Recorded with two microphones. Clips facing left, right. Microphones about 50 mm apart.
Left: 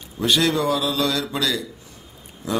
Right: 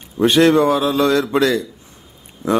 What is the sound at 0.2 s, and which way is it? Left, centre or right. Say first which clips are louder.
A man's voice: right 8 dB; right.